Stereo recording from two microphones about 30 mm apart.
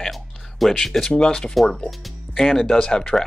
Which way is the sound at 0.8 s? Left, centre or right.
Centre.